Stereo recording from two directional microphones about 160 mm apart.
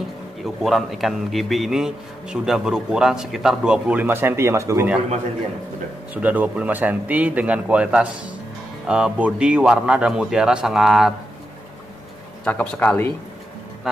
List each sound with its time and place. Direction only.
0.6 s a man's voice: centre (ahead or behind); by 4.8 s 15° right (ahead or behind)
6.1 s a man's voice: 10° right (ahead or behind)
12.4 s speech: 10° left (ahead or behind)